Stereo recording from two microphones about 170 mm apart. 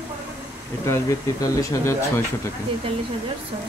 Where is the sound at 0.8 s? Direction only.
15° left (ahead or behind).